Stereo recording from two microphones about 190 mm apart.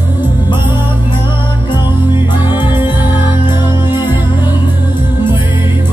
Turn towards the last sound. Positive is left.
turn(degrees=25)  # may be behind; listen again after turning